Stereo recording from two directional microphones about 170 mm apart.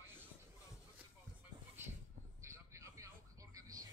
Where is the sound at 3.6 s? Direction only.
20° right (ahead or behind).